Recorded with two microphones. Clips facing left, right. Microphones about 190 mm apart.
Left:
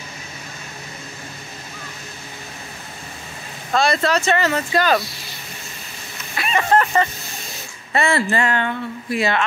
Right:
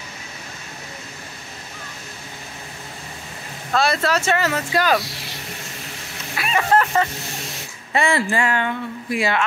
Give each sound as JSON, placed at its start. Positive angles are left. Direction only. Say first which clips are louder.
{"t": 3.7, "sound": "speech", "louder": "left 1 dB", "side_deg": -5}
{"t": 6.3, "sound": "a sound", "louder": "left 1 dB", "side_deg": -5}
{"t": 7.9, "sound": "speech", "louder": "left 1 dB", "side_deg": -15}